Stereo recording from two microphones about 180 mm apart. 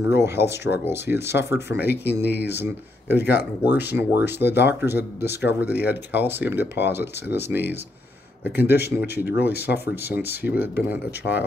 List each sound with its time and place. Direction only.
0.0 s speech: 15° right (ahead or behind)
2.3 s speech: 65° left (ahead or behind)
2.6 s speech: 10° right (ahead or behind)
8.6 s speech: 70° left (ahead or behind)
9.1 s speech: 10° right (ahead or behind)
9.5 s speech: 65° left (ahead or behind)
10.0 s speech: 10° right (ahead or behind)